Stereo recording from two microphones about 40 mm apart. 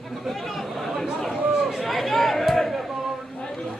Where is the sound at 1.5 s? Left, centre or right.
Centre.